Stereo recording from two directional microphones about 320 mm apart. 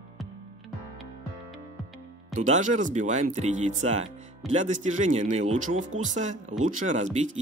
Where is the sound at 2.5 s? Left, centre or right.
Right.